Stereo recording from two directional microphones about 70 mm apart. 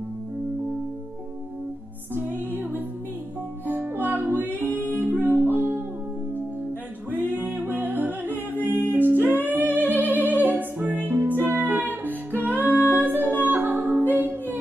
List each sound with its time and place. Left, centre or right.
2.1 s music: right
3.6 s music: right
7.2 s music: right
9.7 s music: left
10.2 s music: right